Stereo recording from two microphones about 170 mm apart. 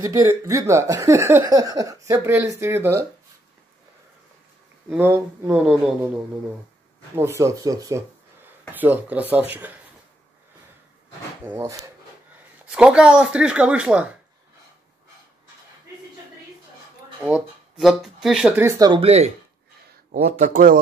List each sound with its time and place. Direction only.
0.0 s speech: 15° right (ahead or behind)
4.8 s speech: 15° right (ahead or behind)
7.2 s speech: 15° right (ahead or behind)
11.4 s speech: 15° right (ahead or behind)
12.7 s speech: 5° right (ahead or behind)
17.2 s speech: 5° right (ahead or behind)
18.6 s speech: 20° right (ahead or behind)
19.0 s speech: 40° right (ahead or behind)
20.1 s speech: 60° right (ahead or behind)